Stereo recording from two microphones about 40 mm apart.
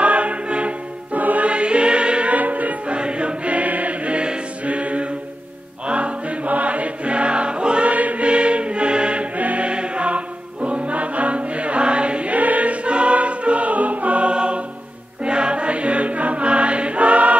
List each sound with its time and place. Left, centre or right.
0.0 s choir: right
1.2 s music: right
1.5 s music: right
2.9 s choir: right
5.9 s music: right
7.9 s choir: right
9.7 s music: right